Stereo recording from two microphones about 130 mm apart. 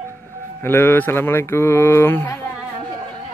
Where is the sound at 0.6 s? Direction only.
15° left (ahead or behind).